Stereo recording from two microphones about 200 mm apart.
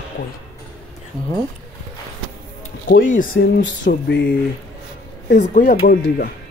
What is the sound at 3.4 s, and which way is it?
Speech, 55° left (ahead or behind).